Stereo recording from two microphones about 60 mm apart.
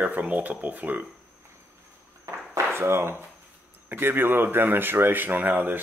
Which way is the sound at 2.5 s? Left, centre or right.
Right.